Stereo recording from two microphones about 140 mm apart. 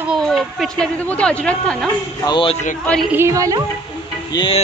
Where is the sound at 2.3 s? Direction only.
35° left (ahead or behind).